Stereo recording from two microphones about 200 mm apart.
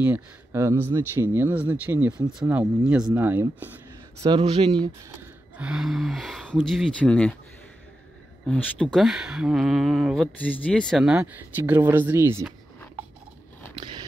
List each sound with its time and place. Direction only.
0.0 s speech: 10° right (ahead or behind)
4.2 s a man's voice: 20° right (ahead or behind)
5.6 s speech: 5° right (ahead or behind)
8.5 s speech: 5° left (ahead or behind); by 12.4 s 10° right (ahead or behind)
13.7 s biting: 25° right (ahead or behind)